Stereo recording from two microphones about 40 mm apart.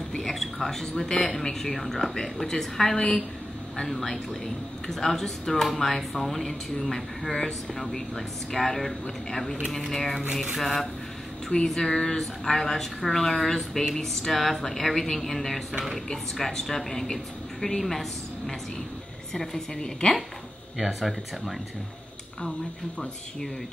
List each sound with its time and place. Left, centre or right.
0.2 s speech: centre
3.0 s a woman's voice: left
3.8 s speech: centre
11.4 s speech: centre
19.3 s speech: centre
20.7 s speech: centre